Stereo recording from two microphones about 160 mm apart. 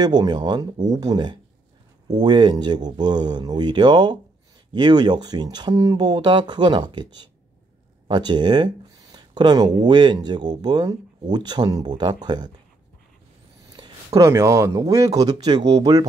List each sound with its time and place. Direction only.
0.0 s speech: 25° right (ahead or behind)
13.7 s speech: 25° right (ahead or behind)